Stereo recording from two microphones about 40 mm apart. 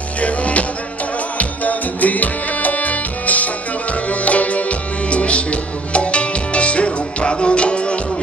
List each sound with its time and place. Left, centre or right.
0.2 s music: left